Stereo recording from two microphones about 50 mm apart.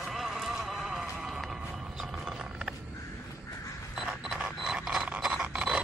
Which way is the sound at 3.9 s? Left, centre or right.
Centre.